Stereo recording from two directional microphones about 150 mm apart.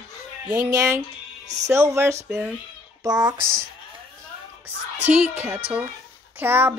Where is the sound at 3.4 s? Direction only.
70° right (ahead or behind).